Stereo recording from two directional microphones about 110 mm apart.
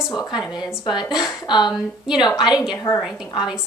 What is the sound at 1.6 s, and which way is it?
A woman's voice, 5° right (ahead or behind).